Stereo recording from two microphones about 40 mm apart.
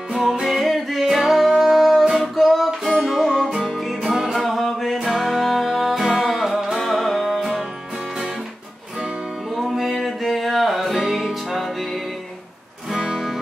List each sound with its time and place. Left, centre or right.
0.1 s music: centre
3.0 s music: centre
6.2 s music: centre
9.6 s music: centre
11.5 s music: centre
12.9 s music: centre